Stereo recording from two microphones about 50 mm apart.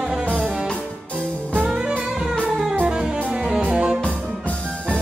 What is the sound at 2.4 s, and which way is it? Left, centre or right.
Music, centre.